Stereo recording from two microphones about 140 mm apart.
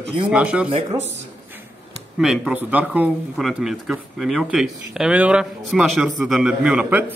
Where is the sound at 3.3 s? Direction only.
Centre (ahead or behind).